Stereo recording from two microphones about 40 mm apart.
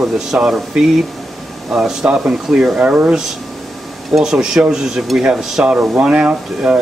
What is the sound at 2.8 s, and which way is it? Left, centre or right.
Speech, right.